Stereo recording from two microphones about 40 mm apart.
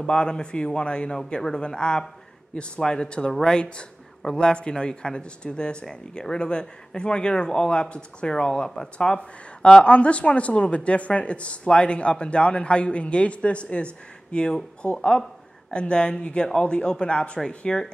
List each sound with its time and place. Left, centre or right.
0.0 s speech: left
8.9 s speech: left